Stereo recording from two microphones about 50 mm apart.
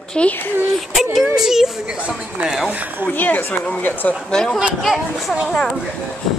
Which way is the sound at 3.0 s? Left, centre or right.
Left.